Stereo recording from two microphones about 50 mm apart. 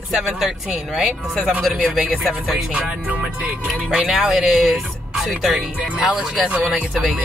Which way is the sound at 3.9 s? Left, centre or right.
Right.